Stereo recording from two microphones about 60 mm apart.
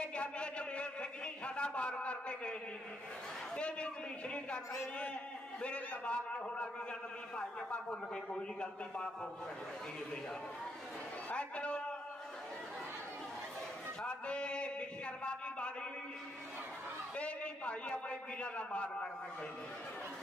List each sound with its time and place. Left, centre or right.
0.0 s a sound: centre
3.5 s a man's voice: centre
5.6 s a man's voice: centre
11.2 s a man's voice: centre
14.0 s a man's voice: centre
17.2 s a man's voice: centre